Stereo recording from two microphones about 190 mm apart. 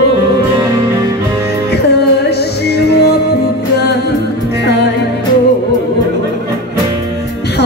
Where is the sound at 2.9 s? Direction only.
60° left (ahead or behind).